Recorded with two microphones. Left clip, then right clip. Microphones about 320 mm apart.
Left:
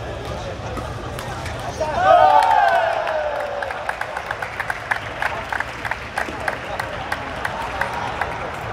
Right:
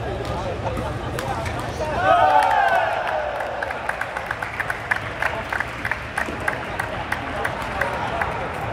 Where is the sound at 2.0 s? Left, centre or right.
Left.